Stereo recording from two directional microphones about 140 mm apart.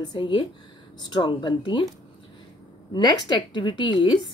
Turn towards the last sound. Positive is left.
turn(degrees=35)  # may be behind; listen again after turning